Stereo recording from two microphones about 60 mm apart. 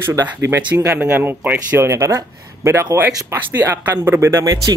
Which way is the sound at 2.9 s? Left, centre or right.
Right.